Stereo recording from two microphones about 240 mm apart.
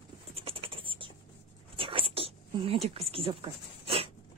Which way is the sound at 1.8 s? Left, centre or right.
Right.